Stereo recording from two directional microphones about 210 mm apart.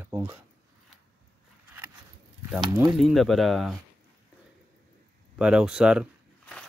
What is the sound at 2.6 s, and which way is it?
Speech, 15° right (ahead or behind).